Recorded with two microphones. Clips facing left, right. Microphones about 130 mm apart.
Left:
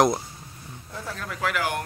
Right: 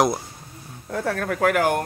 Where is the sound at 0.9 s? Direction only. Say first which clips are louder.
Right 11 dB; 65° right (ahead or behind); by 1.8 s 50° right (ahead or behind).